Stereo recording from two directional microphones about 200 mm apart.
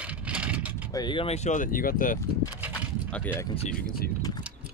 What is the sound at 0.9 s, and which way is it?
Speech, 25° left (ahead or behind).